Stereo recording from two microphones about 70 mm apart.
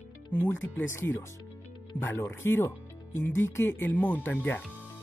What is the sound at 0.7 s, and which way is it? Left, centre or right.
Speech, left.